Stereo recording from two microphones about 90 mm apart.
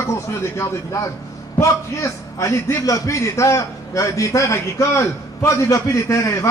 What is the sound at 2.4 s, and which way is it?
A man's voice, 35° left (ahead or behind).